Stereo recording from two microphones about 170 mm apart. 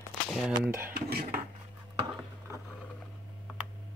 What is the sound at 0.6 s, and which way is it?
Dishes, 15° right (ahead or behind).